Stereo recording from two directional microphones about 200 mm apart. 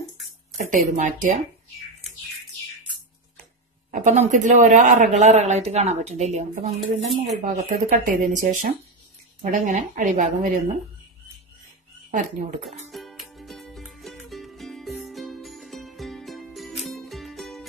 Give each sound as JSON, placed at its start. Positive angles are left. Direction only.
{"t": 0.6, "sound": "a man's voice", "side_deg": -40}
{"t": 3.9, "sound": "a man's voice", "side_deg": -40}
{"t": 12.1, "sound": "a man's voice", "side_deg": -40}
{"t": 12.9, "sound": "music", "side_deg": 0}